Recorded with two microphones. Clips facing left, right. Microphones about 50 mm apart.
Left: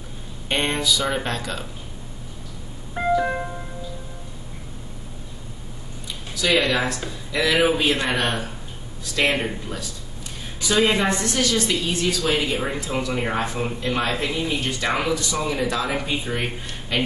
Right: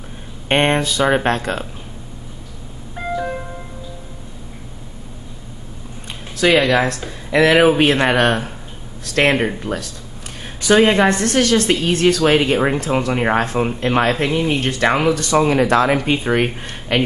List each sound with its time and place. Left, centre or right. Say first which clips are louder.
0.5 s speech: right 6 dB; right
2.9 s music: left 2 dB; centre
6.3 s speech: right 6 dB; right
7.1 s a woman's voice: right 8 dB; right